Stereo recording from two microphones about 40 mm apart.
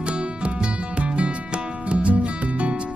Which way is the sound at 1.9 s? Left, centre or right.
Right.